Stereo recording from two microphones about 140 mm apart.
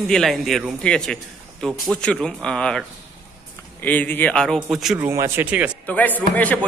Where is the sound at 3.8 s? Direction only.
10° left (ahead or behind).